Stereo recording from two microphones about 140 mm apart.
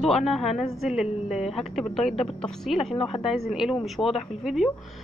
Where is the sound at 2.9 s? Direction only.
45° left (ahead or behind).